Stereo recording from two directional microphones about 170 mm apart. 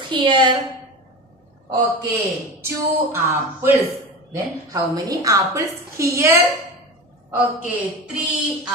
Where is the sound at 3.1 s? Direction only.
15° right (ahead or behind).